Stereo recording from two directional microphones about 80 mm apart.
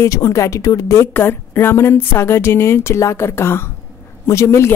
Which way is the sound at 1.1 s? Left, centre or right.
Left.